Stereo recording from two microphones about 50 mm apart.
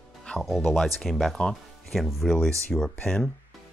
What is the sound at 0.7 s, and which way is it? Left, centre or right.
Speech, centre.